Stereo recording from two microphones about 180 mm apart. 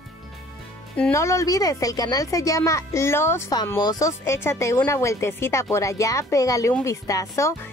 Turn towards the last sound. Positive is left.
turn(degrees=15)  # may be behind; listen again after turning